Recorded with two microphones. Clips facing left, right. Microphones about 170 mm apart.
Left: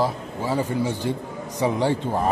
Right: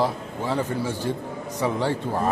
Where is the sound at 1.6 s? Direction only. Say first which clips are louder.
Left 3 dB; 15° left (ahead or behind).